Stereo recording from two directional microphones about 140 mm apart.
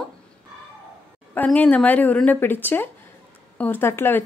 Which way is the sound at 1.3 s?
10° left (ahead or behind).